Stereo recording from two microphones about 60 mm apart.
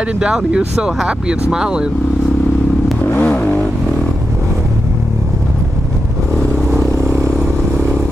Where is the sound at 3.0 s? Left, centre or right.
Left.